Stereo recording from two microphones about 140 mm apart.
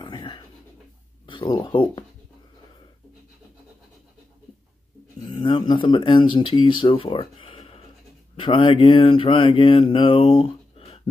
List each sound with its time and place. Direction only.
0.0 s pigeon: 35° left (ahead or behind)
1.2 s speech: 35° left (ahead or behind)
5.2 s speech: 35° left (ahead or behind)
8.4 s mantra: 40° left (ahead or behind)